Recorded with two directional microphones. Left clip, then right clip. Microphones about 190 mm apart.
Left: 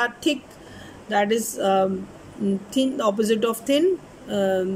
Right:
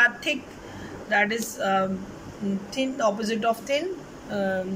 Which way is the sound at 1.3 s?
35° left (ahead or behind).